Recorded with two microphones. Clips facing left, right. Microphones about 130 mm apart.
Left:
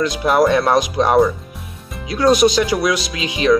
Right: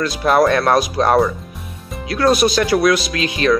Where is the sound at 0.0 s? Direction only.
15° left (ahead or behind).